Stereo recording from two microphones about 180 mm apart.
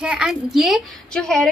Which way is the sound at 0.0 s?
5° right (ahead or behind).